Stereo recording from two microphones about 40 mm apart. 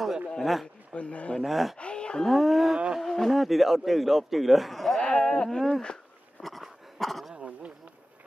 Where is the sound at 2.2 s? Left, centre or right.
Centre.